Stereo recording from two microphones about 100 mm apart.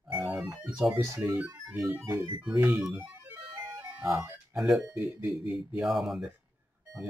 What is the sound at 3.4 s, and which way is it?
Music, 5° right (ahead or behind).